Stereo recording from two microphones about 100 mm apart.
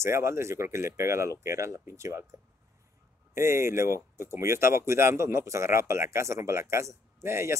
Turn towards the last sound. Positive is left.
turn(degrees=-25)  # may be behind; listen again after turning